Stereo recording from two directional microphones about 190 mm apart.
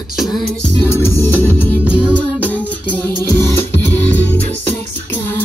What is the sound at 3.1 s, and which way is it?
Music, 20° right (ahead or behind).